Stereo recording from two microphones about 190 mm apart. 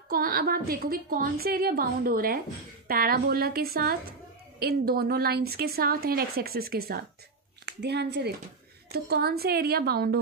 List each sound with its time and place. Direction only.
0.1 s a woman's voice: 50° right (ahead or behind)